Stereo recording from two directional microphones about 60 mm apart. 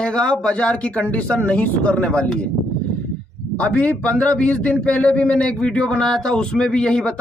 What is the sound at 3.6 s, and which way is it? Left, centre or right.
Speech, left.